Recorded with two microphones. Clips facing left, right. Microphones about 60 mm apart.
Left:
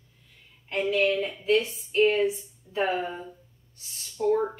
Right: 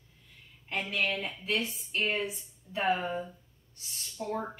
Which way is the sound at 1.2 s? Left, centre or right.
Centre.